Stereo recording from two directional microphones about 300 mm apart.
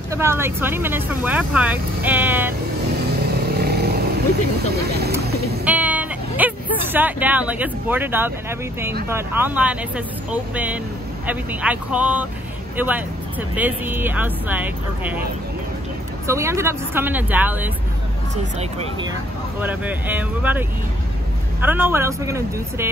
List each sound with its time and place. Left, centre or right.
0.1 s speech: centre
3.4 s vehicle: right
4.6 s speech: right
5.2 s boat: right
5.7 s speech: centre
16.3 s speech: centre
18.6 s speech: centre
19.6 s speech: centre